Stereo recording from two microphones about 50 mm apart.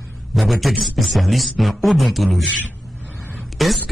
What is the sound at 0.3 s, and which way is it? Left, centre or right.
Speech, centre.